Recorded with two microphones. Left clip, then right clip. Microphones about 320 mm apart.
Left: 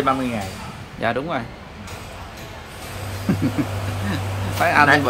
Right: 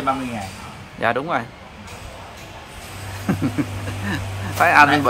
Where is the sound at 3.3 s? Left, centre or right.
Centre.